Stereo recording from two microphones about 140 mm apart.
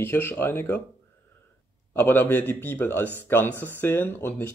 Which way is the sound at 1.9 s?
15° left (ahead or behind).